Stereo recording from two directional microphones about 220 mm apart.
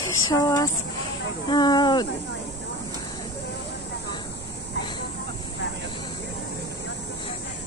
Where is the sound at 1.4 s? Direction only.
20° left (ahead or behind).